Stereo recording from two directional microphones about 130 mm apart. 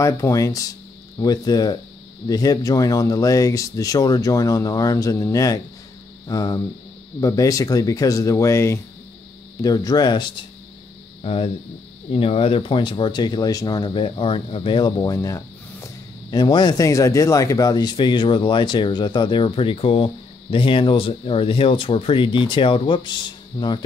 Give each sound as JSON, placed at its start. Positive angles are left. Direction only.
{"t": 0.0, "sound": "speech", "side_deg": 25}
{"t": 11.2, "sound": "speech", "side_deg": 50}